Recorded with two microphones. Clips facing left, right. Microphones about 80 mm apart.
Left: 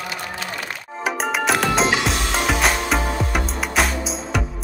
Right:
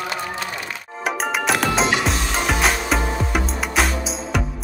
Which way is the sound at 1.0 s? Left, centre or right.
Centre.